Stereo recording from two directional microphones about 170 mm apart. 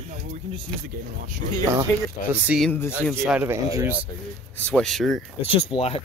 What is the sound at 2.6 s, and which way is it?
Speech, 10° left (ahead or behind).